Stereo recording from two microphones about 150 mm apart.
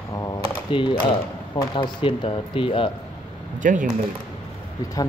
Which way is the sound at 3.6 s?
60° right (ahead or behind).